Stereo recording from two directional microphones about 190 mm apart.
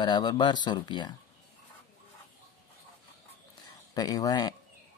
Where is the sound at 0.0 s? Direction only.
25° left (ahead or behind).